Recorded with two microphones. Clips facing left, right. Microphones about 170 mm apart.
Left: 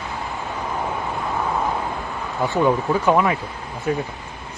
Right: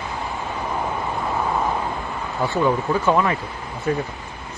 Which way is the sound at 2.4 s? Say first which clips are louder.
Left 1 dB; 15° left (ahead or behind).